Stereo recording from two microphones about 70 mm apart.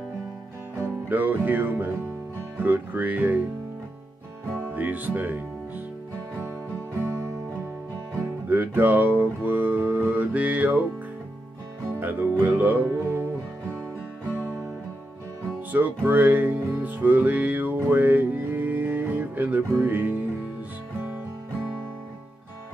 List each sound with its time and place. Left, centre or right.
0.7 s music: right
2.5 s speech: right
4.6 s music: right
8.5 s music: right
12.0 s music: right
15.7 s music: right